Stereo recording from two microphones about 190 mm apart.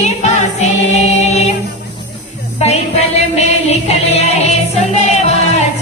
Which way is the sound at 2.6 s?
35° left (ahead or behind).